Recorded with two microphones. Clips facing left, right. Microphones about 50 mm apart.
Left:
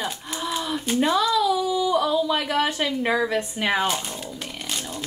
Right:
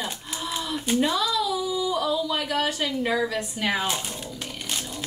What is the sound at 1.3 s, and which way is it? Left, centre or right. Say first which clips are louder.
Speech: left 4 dB; left.